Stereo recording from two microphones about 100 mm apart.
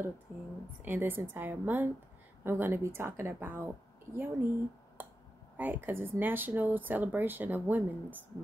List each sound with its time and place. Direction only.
0.8 s speech: 20° right (ahead or behind)
5.6 s speech: 20° right (ahead or behind)